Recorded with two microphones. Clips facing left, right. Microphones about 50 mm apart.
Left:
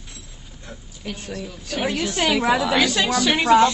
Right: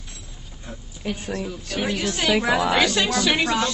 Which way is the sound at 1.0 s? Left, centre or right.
Centre.